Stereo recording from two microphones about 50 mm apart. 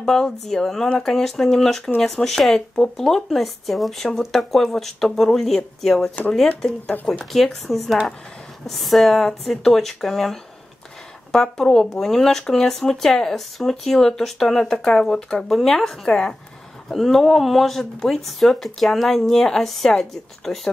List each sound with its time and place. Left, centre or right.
0.0 s speech: centre
16.9 s speech: centre